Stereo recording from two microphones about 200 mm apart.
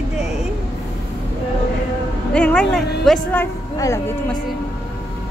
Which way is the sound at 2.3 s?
5° left (ahead or behind).